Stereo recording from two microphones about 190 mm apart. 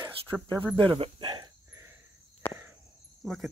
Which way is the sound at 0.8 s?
30° right (ahead or behind).